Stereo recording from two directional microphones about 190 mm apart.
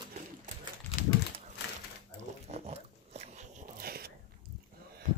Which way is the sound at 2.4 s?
35° right (ahead or behind).